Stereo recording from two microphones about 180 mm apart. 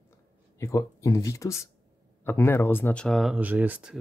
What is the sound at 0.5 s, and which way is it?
Speech, 15° left (ahead or behind).